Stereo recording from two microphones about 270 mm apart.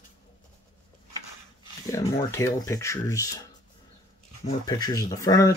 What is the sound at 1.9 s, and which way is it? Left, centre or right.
Speech, centre.